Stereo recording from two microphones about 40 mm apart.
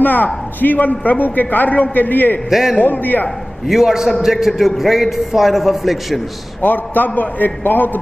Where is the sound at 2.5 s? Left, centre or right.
Centre.